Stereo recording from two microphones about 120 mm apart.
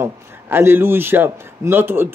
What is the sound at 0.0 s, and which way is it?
Speech, 20° right (ahead or behind).